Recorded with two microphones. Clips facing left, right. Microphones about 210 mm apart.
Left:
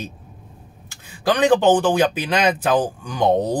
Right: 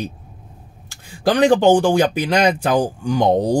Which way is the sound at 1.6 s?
15° right (ahead or behind).